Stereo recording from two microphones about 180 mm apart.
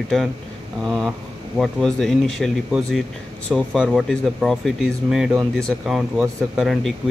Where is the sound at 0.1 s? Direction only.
Centre (ahead or behind).